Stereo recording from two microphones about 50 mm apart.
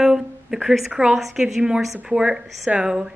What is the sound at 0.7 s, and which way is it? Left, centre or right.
Speech, centre.